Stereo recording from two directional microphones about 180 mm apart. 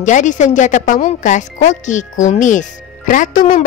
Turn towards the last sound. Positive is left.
turn(degrees=45)  # may be behind; listen again after turning